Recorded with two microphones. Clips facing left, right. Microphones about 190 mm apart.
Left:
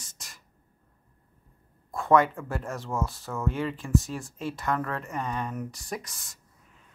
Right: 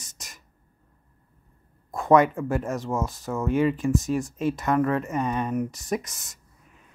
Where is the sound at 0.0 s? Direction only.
20° right (ahead or behind).